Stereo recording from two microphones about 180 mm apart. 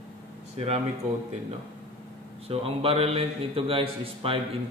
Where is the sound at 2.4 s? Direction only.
30° right (ahead or behind).